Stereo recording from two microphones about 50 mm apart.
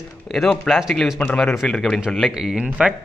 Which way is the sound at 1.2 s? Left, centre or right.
Left.